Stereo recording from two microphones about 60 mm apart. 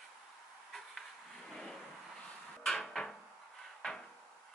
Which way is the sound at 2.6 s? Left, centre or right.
Centre.